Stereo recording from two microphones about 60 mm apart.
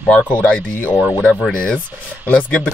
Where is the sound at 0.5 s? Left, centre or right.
Left.